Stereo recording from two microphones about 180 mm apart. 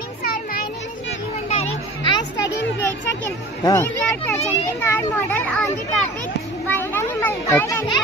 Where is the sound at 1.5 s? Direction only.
30° left (ahead or behind).